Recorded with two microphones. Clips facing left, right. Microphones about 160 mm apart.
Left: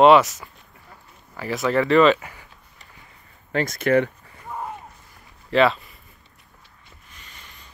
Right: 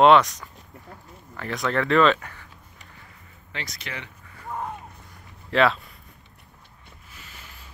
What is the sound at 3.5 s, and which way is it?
Speech, 50° left (ahead or behind).